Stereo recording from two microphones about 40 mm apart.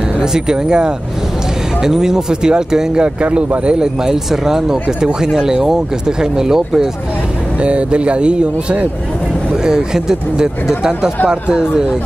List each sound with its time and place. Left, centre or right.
0.2 s speech: centre
3.0 s speech: right
3.8 s speech: centre
7.6 s speech: right
9.5 s speech: centre